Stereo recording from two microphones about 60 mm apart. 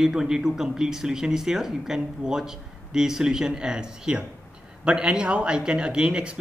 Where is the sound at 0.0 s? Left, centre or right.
Centre.